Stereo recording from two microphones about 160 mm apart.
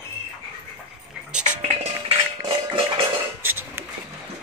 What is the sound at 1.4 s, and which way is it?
Music, 45° right (ahead or behind).